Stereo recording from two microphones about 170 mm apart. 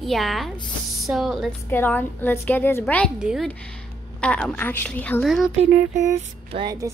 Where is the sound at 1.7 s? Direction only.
10° left (ahead or behind).